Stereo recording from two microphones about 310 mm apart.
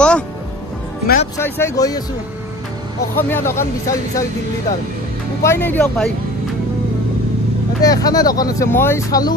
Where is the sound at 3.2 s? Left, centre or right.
Centre.